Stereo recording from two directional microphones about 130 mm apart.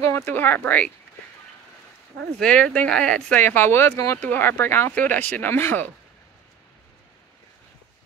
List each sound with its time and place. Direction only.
0.0 s speech: 15° left (ahead or behind)
2.3 s speech: 10° left (ahead or behind)